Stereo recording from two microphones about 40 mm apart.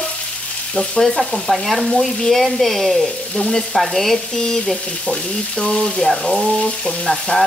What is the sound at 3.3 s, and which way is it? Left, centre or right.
Stir, centre.